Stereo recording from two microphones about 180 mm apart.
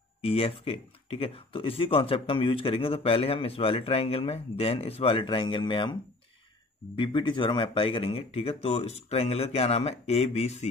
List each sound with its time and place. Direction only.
0.2 s speech: 30° left (ahead or behind)
7.0 s speech: 25° left (ahead or behind)